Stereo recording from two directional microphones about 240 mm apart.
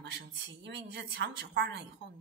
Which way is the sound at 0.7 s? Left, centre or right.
Right.